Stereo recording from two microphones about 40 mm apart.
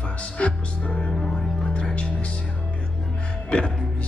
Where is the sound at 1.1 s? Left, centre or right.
Centre.